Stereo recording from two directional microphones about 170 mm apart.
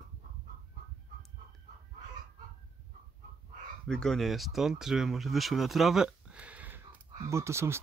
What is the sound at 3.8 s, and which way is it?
Speech, 5° left (ahead or behind).